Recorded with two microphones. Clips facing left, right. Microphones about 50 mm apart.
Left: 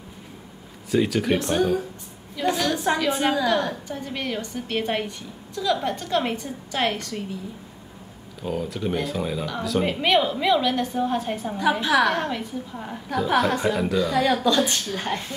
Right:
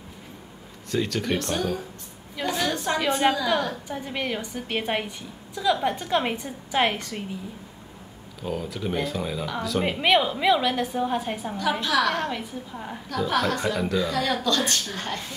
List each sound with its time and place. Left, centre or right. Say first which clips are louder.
0.9 s speech: left 4 dB; centre
2.4 s a woman's voice: left 5 dB; centre
2.7 s a sound: left 3 dB; centre
3.1 s speech: right 5 dB; centre
3.8 s a woman's voice: even; centre
8.5 s speech: left 2 dB; centre
11.8 s a woman's voice: left 3 dB; centre
12.2 s speech: left 2 dB; centre
13.1 s speech: left 3 dB; centre